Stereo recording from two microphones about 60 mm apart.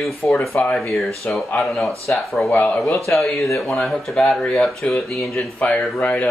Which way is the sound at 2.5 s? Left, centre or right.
Left.